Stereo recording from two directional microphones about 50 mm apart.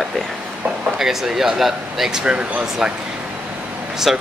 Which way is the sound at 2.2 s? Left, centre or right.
Centre.